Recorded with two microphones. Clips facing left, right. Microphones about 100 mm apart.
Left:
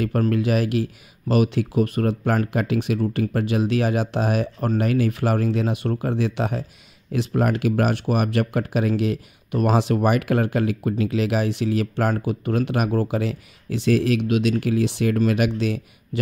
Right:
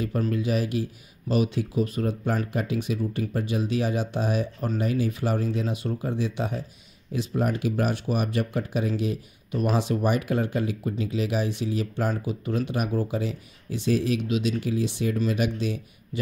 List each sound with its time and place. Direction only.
0.3 s speech: 70° left (ahead or behind)